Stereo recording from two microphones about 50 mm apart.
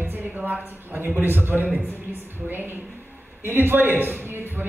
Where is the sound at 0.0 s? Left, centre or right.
Right.